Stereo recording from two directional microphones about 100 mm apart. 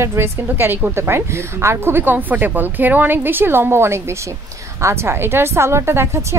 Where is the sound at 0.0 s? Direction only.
25° right (ahead or behind).